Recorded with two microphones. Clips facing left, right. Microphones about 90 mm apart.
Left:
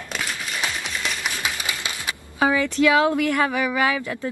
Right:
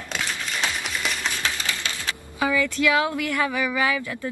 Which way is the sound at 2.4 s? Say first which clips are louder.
Left 3 dB; 35° left (ahead or behind).